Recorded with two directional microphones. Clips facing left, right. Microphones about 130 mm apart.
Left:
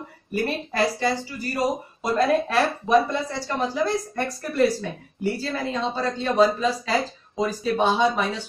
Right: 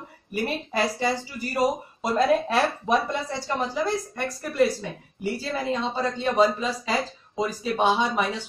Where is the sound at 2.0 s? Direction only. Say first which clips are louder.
Even; 20° right (ahead or behind).